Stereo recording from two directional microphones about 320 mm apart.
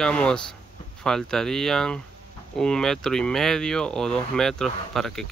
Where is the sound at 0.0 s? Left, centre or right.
Centre.